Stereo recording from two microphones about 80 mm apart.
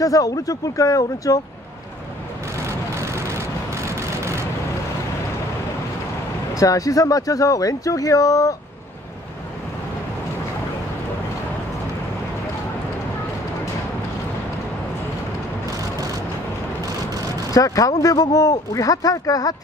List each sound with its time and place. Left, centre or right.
0.0 s a man's voice: left
2.5 s vehicle: right
6.5 s a man's voice: left
17.5 s a man's voice: left